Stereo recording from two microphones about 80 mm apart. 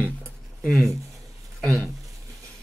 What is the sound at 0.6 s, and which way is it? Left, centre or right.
Speech, centre.